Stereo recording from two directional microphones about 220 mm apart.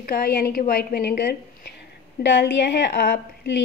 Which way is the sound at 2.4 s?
50° left (ahead or behind).